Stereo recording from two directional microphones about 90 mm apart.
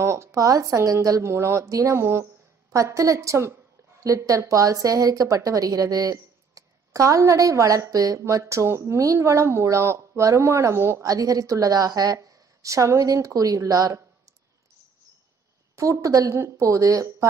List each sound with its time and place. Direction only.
0.0 s a woman's voice: 35° right (ahead or behind)
11.1 s a woman's voice: 40° right (ahead or behind)
15.7 s a woman's voice: 35° right (ahead or behind)